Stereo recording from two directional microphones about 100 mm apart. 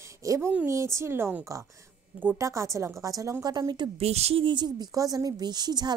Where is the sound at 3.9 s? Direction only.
90° right.